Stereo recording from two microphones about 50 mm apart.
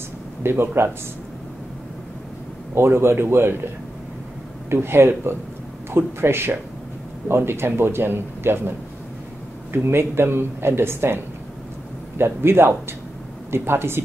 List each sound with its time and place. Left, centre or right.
0.4 s speech: right
2.7 s speech: right
4.6 s a woman's voice: right
12.2 s speech: right